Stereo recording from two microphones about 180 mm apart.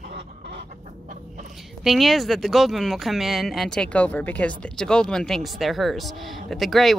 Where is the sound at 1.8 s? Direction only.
Centre (ahead or behind).